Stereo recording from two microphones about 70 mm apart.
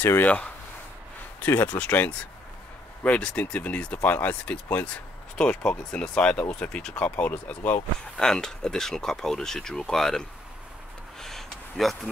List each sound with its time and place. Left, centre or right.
0.0 s speech: left
1.4 s speech: left
8.2 s speech: centre
11.1 s a sound: centre